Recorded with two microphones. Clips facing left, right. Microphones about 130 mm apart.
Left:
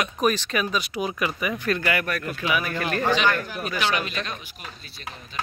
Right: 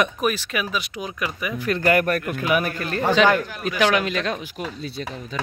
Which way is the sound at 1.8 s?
45° right (ahead or behind).